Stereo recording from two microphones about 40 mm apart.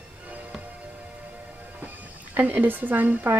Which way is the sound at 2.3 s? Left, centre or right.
Right.